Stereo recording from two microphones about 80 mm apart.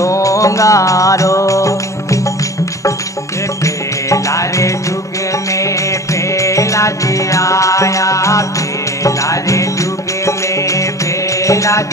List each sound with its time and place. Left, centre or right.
0.0 s music: left
3.6 s music: left
6.3 s music: left